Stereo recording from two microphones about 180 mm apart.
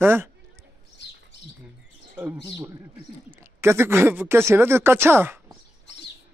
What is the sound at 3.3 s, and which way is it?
Speech, 15° right (ahead or behind).